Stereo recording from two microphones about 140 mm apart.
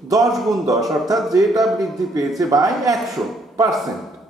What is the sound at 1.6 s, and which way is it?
Speech, centre (ahead or behind).